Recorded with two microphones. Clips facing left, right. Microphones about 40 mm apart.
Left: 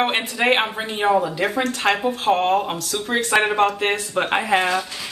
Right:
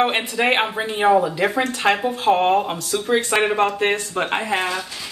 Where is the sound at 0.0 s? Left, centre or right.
Centre.